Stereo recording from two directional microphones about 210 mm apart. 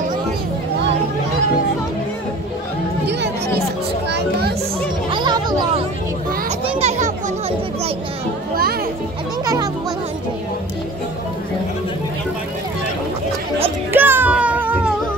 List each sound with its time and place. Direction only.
3.1 s chatter: 55° right (ahead or behind)
4.1 s music: 50° right (ahead or behind)
5.1 s music: 20° right (ahead or behind)
6.8 s children playing: 30° right (ahead or behind)
9.4 s music: 15° right (ahead or behind)
13.9 s music: 10° right (ahead or behind)